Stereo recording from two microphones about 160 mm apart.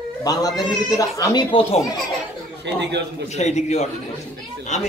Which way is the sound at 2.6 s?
90° right.